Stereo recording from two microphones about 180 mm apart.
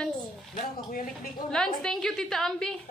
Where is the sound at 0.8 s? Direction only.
50° left (ahead or behind).